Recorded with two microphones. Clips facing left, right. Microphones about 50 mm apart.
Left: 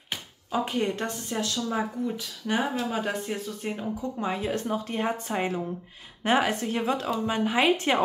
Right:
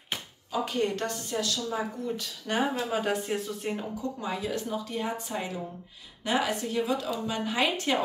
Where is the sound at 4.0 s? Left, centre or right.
Left.